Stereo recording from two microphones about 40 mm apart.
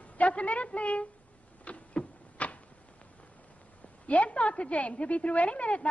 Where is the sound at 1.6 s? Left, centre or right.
Left.